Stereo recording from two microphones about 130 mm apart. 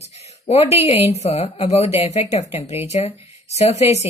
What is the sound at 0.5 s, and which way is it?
A woman's voice, 55° left (ahead or behind).